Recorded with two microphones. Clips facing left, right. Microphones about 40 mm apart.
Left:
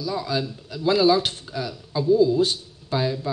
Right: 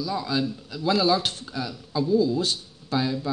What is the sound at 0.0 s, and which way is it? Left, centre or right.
Speech, centre.